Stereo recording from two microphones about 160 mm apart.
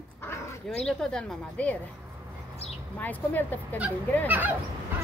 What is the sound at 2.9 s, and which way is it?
Speech, 10° left (ahead or behind).